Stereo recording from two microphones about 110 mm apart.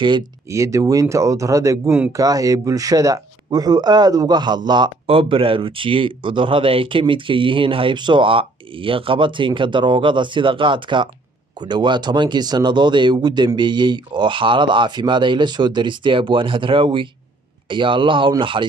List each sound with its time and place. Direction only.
0.5 s speech: 30° right (ahead or behind)
5.0 s speech: 55° right (ahead or behind)